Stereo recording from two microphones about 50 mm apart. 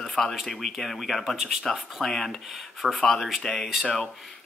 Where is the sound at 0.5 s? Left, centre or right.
Centre.